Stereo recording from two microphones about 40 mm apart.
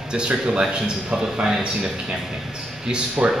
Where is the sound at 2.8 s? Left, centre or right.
Right.